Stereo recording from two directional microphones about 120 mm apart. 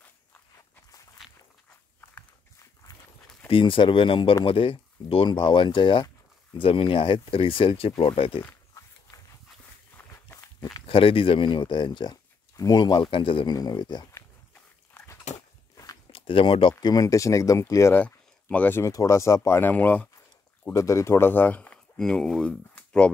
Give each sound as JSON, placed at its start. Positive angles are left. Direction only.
{"t": 3.4, "sound": "speech", "side_deg": 45}
{"t": 9.9, "sound": "walk", "side_deg": 15}
{"t": 10.9, "sound": "speech", "side_deg": 50}
{"t": 13.6, "sound": "speech", "side_deg": 35}
{"t": 15.3, "sound": "dog", "side_deg": 75}
{"t": 15.7, "sound": "walk", "side_deg": 30}
{"t": 16.1, "sound": "speech", "side_deg": 50}
{"t": 18.0, "sound": "speech", "side_deg": 15}
{"t": 20.7, "sound": "speech", "side_deg": 25}